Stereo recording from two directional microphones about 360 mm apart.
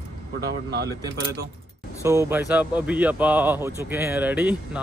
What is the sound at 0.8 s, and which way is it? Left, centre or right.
Speech, centre.